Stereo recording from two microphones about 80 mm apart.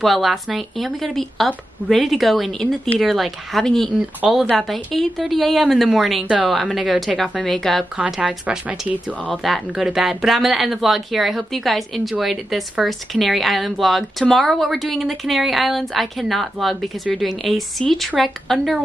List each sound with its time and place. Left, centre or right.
0.0 s speech: centre
8.0 s speech: centre
9.3 s speech: centre